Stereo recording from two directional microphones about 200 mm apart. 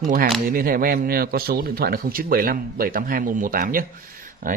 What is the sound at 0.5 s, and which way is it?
Speech, 45° right (ahead or behind).